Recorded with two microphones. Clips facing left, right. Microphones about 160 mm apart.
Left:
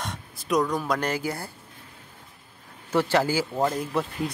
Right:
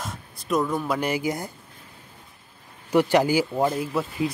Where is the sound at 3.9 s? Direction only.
Centre (ahead or behind).